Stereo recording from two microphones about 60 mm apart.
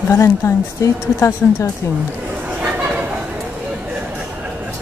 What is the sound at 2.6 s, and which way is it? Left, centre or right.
Chatter, right.